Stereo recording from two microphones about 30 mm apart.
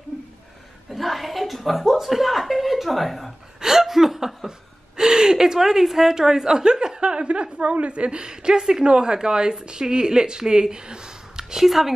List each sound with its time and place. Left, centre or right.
0.9 s a sound: centre
2.0 s speech: centre
3.6 s speech: centre
4.5 s a woman's voice: right
7.0 s speech: right
8.3 s a woman's voice: right
11.5 s speech: centre